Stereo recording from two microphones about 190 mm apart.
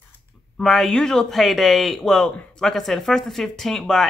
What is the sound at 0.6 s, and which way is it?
Speech, centre (ahead or behind).